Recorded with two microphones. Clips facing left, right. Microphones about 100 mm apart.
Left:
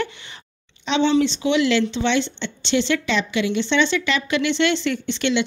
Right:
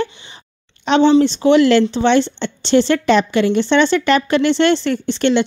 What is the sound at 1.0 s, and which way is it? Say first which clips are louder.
A woman's voice: right 6 dB; 40° right (ahead or behind).